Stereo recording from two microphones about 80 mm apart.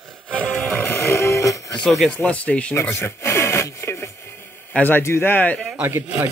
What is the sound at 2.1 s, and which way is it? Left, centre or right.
Speech, centre.